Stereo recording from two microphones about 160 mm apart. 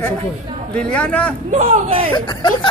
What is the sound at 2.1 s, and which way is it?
Speech, 30° left (ahead or behind).